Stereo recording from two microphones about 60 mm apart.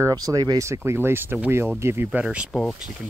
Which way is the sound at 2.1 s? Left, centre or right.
Right.